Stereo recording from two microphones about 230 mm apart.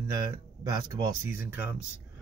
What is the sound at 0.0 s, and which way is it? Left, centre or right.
Speech, centre.